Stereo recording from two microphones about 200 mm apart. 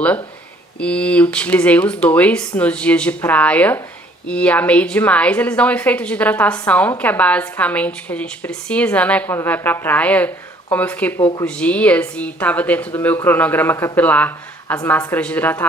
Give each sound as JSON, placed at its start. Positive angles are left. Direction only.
{"t": 0.7, "sound": "a woman's voice", "side_deg": 5}